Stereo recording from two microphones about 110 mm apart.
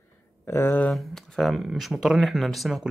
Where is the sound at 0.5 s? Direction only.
20° left (ahead or behind).